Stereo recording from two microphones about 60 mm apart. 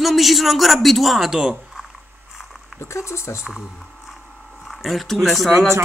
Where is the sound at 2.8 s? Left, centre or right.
Left.